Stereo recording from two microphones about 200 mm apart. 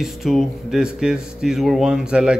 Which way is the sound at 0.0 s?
Centre (ahead or behind).